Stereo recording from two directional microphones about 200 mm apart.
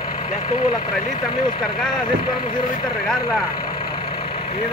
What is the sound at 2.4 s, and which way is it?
Speech, 35° left (ahead or behind).